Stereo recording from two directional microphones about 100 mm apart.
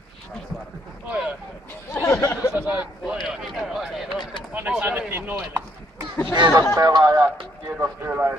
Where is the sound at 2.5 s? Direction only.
20° right (ahead or behind).